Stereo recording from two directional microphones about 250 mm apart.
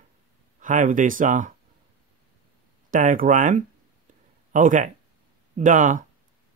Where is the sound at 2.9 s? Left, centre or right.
Right.